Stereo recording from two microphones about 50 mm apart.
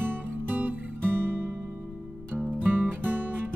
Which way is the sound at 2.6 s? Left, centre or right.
Right.